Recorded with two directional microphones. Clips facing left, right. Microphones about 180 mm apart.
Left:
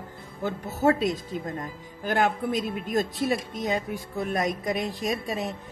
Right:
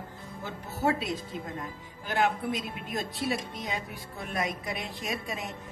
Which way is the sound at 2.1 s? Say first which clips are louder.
Left 3 dB; 45° left (ahead or behind).